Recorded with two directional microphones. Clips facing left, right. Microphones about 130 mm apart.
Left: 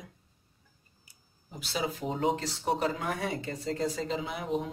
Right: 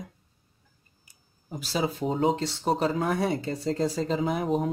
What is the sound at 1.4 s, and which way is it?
Speech, 40° right (ahead or behind).